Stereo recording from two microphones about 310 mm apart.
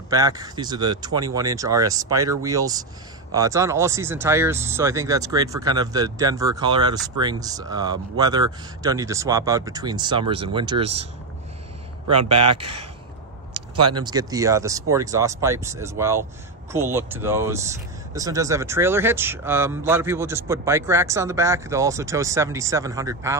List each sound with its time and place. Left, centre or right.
0.1 s speech: centre
12.1 s speech: right
13.5 s a sound: right
13.9 s speech: centre